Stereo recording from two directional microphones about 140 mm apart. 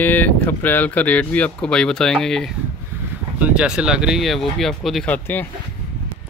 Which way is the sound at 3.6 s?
5° right (ahead or behind).